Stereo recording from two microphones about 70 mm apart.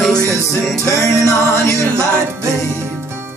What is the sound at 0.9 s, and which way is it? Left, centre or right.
Music, left.